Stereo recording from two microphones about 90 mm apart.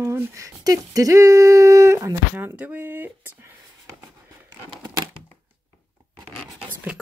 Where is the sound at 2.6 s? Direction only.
20° right (ahead or behind).